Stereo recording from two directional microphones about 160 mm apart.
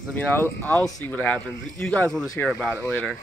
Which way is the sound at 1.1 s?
10° left (ahead or behind).